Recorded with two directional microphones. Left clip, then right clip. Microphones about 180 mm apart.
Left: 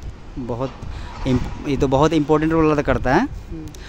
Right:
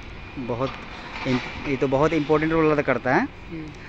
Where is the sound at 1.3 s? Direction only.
40° left (ahead or behind).